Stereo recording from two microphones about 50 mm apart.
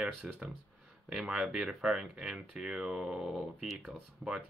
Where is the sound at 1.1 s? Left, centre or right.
Centre.